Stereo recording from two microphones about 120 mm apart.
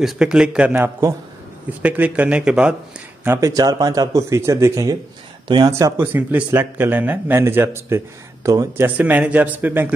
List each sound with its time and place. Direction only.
0.0 s speech: 5° right (ahead or behind)
3.3 s speech: 25° right (ahead or behind)
6.1 s speech: 15° right (ahead or behind)
8.8 s speech: 15° right (ahead or behind)